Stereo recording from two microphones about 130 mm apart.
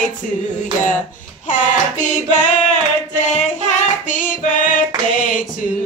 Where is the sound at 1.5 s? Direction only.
70° left (ahead or behind); by 4.7 s 90° left.